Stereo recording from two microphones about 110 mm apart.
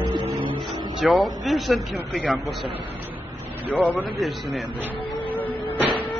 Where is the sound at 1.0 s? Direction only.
Centre (ahead or behind).